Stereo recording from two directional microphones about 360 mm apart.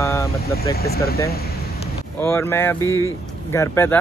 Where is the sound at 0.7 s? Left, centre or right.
Left.